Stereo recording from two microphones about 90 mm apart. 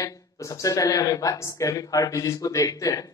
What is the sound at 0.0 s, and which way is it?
Speech, 40° left (ahead or behind).